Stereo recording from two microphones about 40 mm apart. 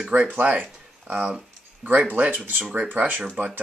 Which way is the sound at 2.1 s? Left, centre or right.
Right.